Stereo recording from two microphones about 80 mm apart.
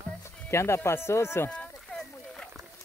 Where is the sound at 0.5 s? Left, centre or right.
Left.